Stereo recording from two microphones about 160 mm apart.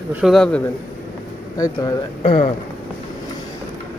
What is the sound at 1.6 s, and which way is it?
Speech, 25° left (ahead or behind).